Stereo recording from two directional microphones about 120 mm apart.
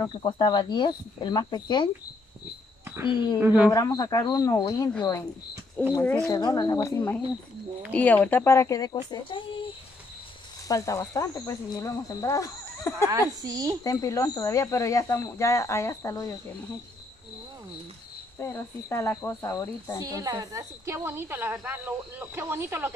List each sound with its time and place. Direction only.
0.0 s speech: 40° left (ahead or behind)
3.1 s speech: 40° left (ahead or behind)
3.3 s a man's voice: 10° right (ahead or behind)
3.7 s speech: 30° left (ahead or behind)
5.8 s speech: 10° left (ahead or behind)
6.1 s speech: 30° left (ahead or behind)
7.9 s speech: 15° left (ahead or behind); by 9.4 s 40° left (ahead or behind)
10.7 s speech: 25° left (ahead or behind)
13.4 s speech: 30° right (ahead or behind)
13.8 s speech: 30° left (ahead or behind)
18.4 s speech: 20° left (ahead or behind)
20.0 s speech: 30° right (ahead or behind)